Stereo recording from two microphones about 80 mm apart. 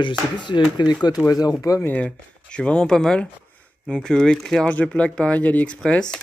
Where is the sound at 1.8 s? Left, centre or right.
Left.